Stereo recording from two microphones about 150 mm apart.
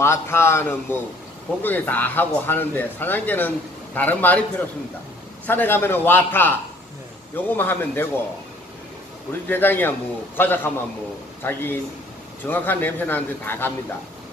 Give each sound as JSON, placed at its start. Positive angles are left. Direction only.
{"t": 0.0, "sound": "speech", "side_deg": 15}
{"t": 9.5, "sound": "speech", "side_deg": 15}